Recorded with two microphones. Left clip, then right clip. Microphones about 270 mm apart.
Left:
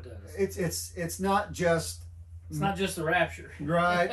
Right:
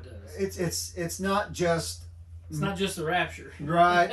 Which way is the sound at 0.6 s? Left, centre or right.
Centre.